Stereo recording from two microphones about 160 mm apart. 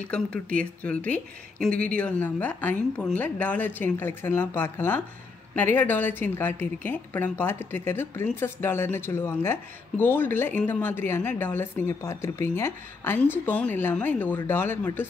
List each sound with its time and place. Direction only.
0.1 s a woman's voice: 5° left (ahead or behind)